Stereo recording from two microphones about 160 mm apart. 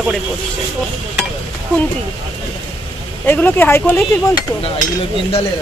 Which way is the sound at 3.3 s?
10° left (ahead or behind).